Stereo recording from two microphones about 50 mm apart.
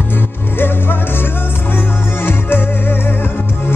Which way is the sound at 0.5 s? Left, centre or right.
Left.